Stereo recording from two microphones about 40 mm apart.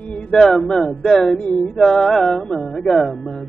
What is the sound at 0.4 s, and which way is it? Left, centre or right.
Speech, centre.